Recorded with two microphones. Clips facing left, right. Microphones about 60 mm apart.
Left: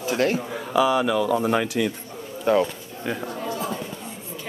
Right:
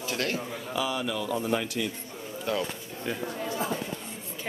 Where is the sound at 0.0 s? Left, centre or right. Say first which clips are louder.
Left 8 dB; left.